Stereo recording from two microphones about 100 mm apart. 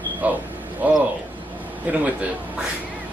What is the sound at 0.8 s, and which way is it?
A man's voice, 15° right (ahead or behind).